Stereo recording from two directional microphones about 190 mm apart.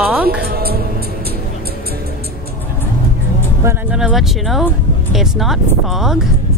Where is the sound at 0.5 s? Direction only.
55° right (ahead or behind).